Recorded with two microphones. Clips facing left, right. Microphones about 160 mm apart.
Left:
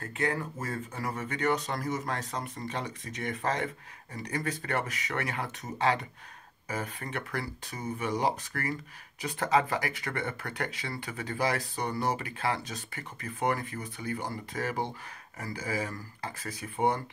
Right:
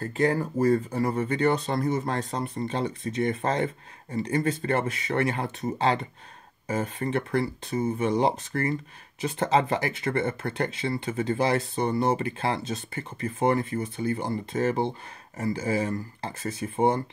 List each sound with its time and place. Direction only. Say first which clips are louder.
0.0 s speech: right 7 dB; 35° right (ahead or behind)